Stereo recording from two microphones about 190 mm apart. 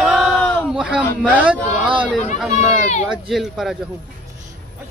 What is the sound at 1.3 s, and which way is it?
Speech, 5° right (ahead or behind).